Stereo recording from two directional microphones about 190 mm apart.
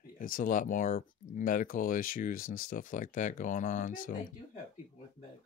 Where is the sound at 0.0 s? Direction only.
45° left (ahead or behind).